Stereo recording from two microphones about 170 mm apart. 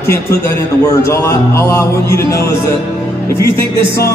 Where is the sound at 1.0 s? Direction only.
15° left (ahead or behind).